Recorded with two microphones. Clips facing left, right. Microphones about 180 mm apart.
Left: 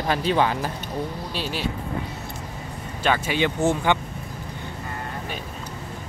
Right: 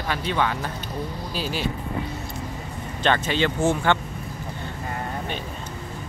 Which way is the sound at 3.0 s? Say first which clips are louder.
Even; 10° left (ahead or behind).